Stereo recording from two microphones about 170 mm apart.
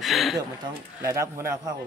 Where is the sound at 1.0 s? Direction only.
15° right (ahead or behind).